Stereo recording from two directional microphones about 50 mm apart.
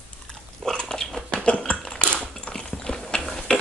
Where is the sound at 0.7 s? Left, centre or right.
Centre.